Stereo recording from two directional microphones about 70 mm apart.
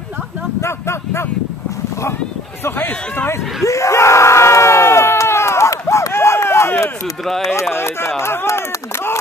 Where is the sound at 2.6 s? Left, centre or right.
Left.